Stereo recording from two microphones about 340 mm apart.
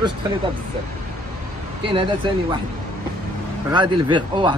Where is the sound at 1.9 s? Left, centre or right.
Centre.